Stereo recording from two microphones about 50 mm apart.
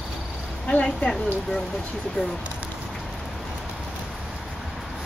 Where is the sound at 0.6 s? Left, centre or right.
Left.